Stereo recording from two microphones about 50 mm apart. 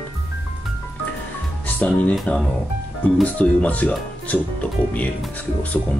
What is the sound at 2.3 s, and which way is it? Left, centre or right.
Speech, left.